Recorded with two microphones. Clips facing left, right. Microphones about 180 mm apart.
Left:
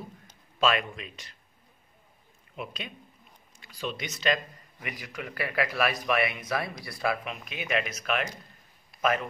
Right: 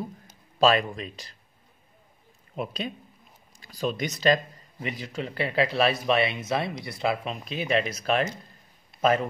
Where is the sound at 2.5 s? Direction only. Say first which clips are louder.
Right 7 dB; 35° right (ahead or behind).